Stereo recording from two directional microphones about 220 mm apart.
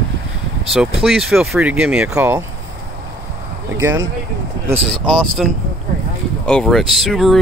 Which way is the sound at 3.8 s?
15° right (ahead or behind).